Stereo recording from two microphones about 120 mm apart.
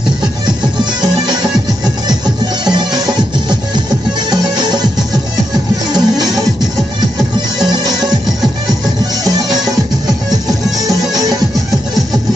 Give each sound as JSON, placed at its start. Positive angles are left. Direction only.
{"t": 1.0, "sound": "music", "side_deg": -35}
{"t": 2.6, "sound": "music", "side_deg": -35}
{"t": 5.9, "sound": "music", "side_deg": -35}
{"t": 9.2, "sound": "music", "side_deg": -30}
{"t": 10.8, "sound": "music", "side_deg": -30}